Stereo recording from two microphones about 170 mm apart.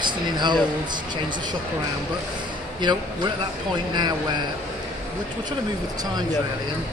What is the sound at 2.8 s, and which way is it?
Speech, 25° right (ahead or behind).